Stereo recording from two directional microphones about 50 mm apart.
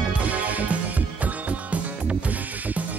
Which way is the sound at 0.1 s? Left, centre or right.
Right.